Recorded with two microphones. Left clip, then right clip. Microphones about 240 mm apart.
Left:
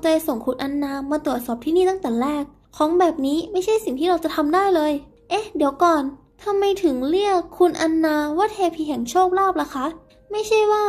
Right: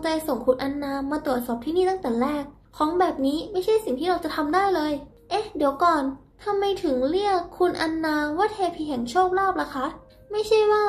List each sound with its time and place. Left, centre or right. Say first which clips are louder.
0.0 s a woman's voice: left 4 dB; left